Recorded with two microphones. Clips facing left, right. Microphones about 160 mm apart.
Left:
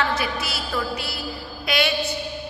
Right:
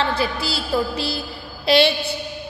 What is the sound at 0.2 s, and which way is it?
A woman's voice, 30° right (ahead or behind).